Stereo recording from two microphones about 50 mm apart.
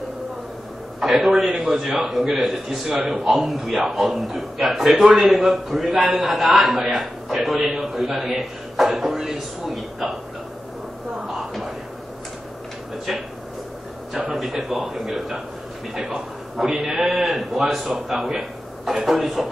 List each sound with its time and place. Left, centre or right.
1.0 s a man's voice: centre
11.1 s a sound: centre
14.3 s a man's voice: centre
16.5 s a man's voice: centre